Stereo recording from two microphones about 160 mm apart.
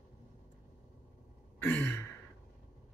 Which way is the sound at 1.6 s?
15° left (ahead or behind).